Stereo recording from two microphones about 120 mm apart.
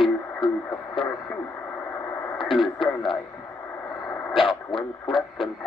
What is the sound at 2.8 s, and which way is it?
Speech, 45° left (ahead or behind).